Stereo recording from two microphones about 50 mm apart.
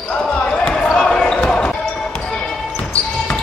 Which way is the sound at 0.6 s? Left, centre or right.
Centre.